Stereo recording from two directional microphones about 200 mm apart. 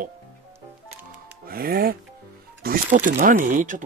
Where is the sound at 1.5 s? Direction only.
50° right (ahead or behind).